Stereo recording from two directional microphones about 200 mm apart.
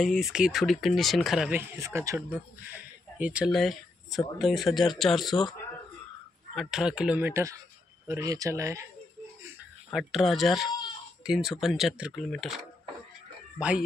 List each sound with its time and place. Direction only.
0.0 s speech: centre (ahead or behind)
6.5 s speech: centre (ahead or behind)
9.9 s speech: centre (ahead or behind)
13.6 s speech: 5° right (ahead or behind)